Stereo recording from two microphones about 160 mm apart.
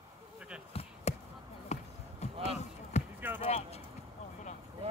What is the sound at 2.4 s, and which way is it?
Basketball bounce, 45° left (ahead or behind).